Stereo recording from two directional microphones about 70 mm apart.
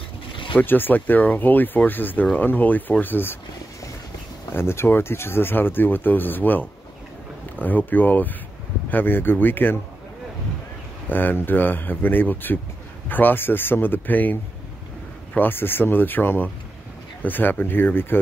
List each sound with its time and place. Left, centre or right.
0.6 s speech: left
4.6 s speech: left
7.6 s speech: left
11.1 s speech: left